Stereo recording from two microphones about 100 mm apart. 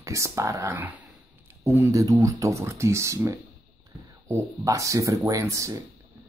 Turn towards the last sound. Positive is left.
turn(degrees=-30)  # may be behind; listen again after turning